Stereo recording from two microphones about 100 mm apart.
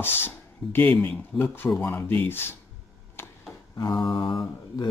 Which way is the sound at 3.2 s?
25° left (ahead or behind).